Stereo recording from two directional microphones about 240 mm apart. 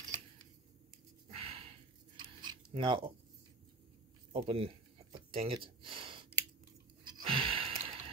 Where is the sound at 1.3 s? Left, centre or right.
Right.